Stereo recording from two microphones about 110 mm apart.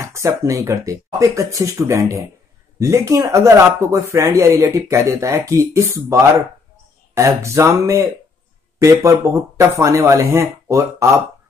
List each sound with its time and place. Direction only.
0.0 s speech: 25° right (ahead or behind)
7.2 s speech: 25° right (ahead or behind)